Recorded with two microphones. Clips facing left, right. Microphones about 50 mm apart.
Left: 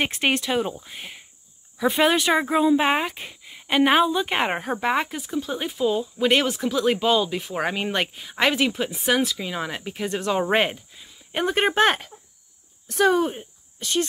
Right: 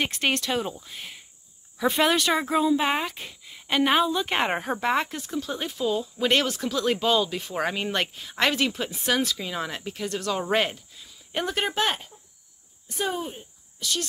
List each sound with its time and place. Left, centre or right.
0.0 s speech: centre
3.1 s speech: centre
4.2 s speech: centre
11.6 s speech: left
12.8 s speech: left
13.7 s speech: left